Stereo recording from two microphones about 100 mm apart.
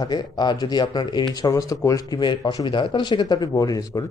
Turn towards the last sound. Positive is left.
turn(degrees=40)  # may be behind; listen again after turning